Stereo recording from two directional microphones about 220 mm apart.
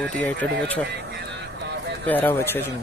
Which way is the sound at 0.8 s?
50° right (ahead or behind).